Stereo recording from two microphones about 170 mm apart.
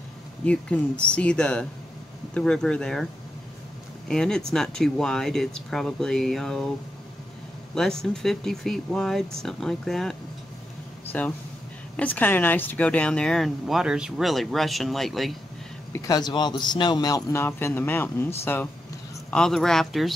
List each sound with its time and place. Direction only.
0.5 s a man's voice: 5° left (ahead or behind)
4.1 s speech: 5° left (ahead or behind)
7.7 s speech: 5° left (ahead or behind)
15.9 s a man's voice: 25° left (ahead or behind); by 20.2 s centre (ahead or behind)